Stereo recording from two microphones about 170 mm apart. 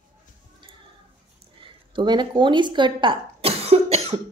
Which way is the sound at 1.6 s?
25° right (ahead or behind).